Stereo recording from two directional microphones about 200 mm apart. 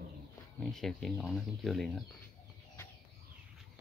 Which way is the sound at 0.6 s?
5° left (ahead or behind).